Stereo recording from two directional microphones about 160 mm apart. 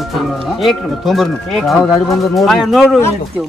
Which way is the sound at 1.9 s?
20° left (ahead or behind).